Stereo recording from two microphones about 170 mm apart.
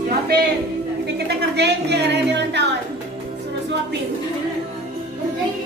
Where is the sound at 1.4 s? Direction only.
80° right.